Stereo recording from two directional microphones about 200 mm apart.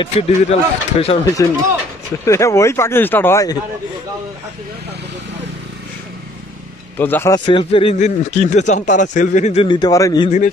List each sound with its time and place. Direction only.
0.0 s speech: 30° left (ahead or behind)
2.2 s speech: 15° left (ahead or behind)
7.0 s speech: 10° left (ahead or behind)